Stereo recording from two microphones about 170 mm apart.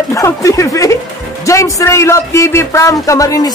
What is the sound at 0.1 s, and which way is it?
A man's voice, 20° left (ahead or behind).